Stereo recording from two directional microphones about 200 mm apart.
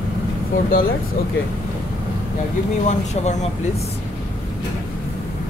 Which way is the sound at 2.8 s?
35° left (ahead or behind).